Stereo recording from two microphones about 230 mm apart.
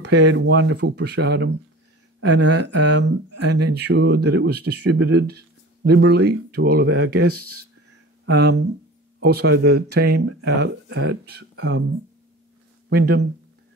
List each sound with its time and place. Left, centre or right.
0.1 s speech: right
2.3 s speech: right
2.6 s speech: right
7.2 s speech: right
8.3 s speech: right
12.9 s speech: right